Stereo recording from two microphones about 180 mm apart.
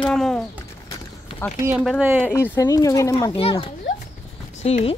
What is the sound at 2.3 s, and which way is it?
Speech, 15° left (ahead or behind).